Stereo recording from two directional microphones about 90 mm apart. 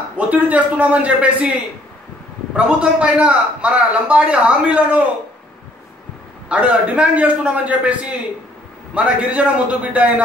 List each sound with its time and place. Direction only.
0.3 s a man's voice: 20° right (ahead or behind)
6.5 s a man's voice: 15° right (ahead or behind)